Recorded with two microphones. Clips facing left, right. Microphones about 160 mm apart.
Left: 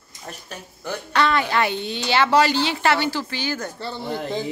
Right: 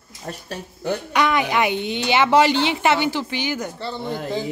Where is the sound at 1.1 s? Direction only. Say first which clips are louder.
Left 1 dB; 15° right (ahead or behind).